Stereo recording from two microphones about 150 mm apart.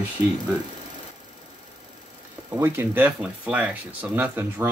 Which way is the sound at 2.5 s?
15° right (ahead or behind).